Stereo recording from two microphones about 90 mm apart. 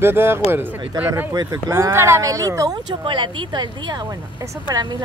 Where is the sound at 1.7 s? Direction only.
30° right (ahead or behind).